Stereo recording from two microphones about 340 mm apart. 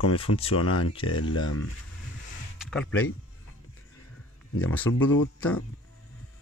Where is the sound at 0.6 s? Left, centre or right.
Left.